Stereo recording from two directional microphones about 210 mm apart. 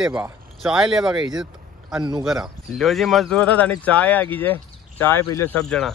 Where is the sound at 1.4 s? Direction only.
Centre (ahead or behind).